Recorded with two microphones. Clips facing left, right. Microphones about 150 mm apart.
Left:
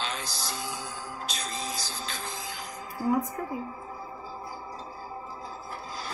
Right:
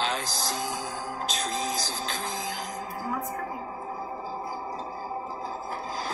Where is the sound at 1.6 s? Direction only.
45° right (ahead or behind).